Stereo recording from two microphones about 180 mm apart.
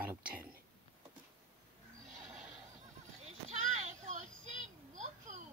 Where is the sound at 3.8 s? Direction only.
40° right (ahead or behind).